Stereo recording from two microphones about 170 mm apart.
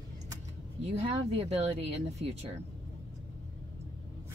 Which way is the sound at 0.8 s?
40° right (ahead or behind).